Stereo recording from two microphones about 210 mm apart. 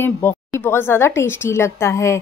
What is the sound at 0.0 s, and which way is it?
Speech, 10° left (ahead or behind).